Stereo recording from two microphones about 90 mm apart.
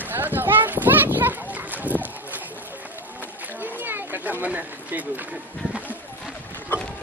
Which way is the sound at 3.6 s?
20° right (ahead or behind).